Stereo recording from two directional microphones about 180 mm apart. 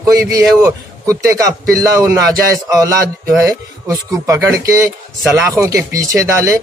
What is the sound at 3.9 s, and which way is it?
Speech, 20° right (ahead or behind).